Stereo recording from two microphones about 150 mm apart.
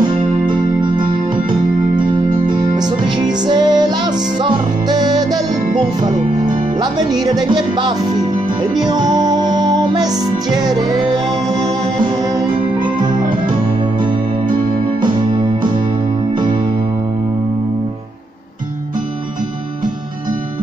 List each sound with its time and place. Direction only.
0.5 s music: 30° right (ahead or behind)
16.3 s music: 30° right (ahead or behind)